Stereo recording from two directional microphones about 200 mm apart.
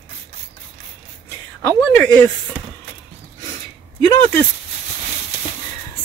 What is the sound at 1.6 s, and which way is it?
Speech, 5° left (ahead or behind).